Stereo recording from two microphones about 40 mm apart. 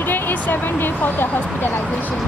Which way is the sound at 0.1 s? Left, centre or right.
Left.